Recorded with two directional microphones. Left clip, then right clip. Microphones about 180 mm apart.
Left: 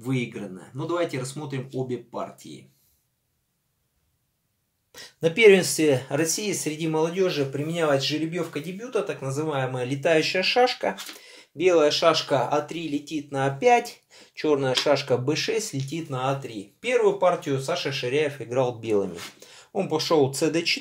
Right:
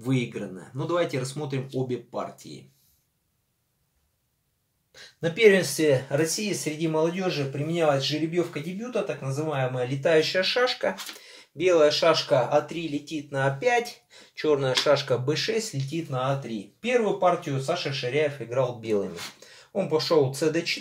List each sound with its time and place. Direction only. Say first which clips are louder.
0.0 s speech: right 1 dB; centre (ahead or behind)
4.9 s speech: left 5 dB; 40° left (ahead or behind)
14.3 s speech: left 1 dB; 25° left (ahead or behind); by 20.7 s 45° left (ahead or behind)